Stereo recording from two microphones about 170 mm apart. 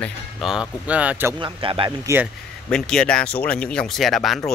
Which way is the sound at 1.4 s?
30° right (ahead or behind).